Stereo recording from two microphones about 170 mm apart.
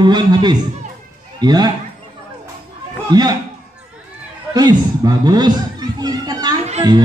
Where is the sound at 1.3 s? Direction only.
25° right (ahead or behind).